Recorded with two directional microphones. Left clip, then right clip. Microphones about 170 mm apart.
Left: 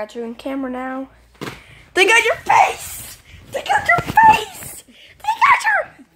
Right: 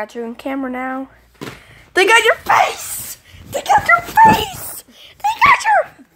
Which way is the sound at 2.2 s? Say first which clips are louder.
Right 1 dB; 20° right (ahead or behind).